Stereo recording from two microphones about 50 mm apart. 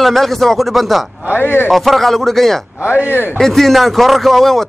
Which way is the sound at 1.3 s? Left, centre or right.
Left.